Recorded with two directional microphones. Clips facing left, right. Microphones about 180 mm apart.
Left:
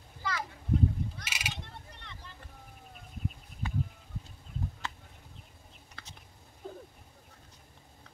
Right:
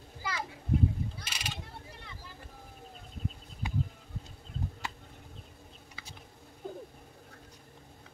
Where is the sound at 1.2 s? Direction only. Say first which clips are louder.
Left 1 dB; 10° left (ahead or behind).